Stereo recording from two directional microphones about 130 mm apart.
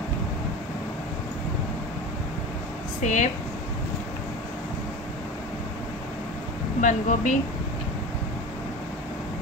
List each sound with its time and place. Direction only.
3.0 s speech: 75° left (ahead or behind)
6.8 s speech: 75° left (ahead or behind)